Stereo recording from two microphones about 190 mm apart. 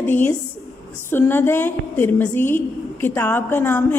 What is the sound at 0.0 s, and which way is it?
A woman's voice, 10° left (ahead or behind).